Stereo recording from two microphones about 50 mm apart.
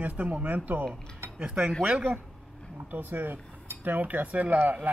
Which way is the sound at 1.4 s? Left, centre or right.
Right.